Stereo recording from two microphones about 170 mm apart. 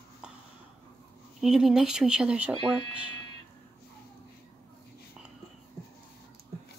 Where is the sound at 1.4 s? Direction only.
5° right (ahead or behind).